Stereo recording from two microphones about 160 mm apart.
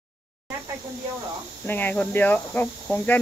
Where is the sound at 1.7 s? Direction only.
10° left (ahead or behind).